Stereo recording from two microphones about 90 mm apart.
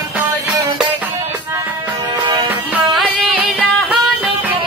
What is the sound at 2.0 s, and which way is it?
Music, 50° right (ahead or behind).